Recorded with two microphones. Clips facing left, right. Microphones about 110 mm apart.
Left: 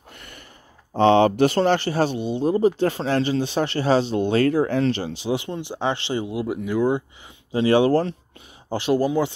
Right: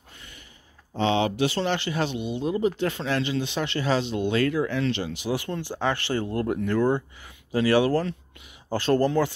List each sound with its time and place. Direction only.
0.9 s speech: 50° left (ahead or behind); by 7.0 s 10° left (ahead or behind)
7.5 s speech: 25° left (ahead or behind)
8.6 s speech: 15° left (ahead or behind)